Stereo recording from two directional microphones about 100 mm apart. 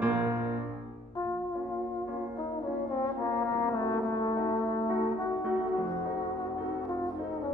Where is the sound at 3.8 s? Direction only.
45° left (ahead or behind).